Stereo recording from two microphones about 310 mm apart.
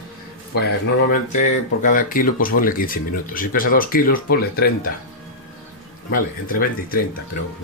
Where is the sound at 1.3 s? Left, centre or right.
Left.